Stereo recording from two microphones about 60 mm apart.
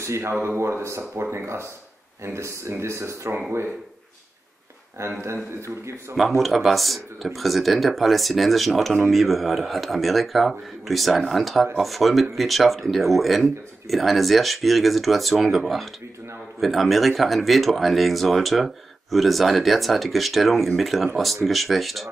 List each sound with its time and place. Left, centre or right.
0.0 s speech: right
5.0 s speech: right
6.1 s speech: centre